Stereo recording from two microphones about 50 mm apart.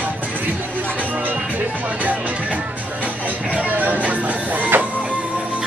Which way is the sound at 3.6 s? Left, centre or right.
Right.